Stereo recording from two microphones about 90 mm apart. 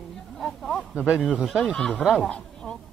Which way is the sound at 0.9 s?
15° right (ahead or behind).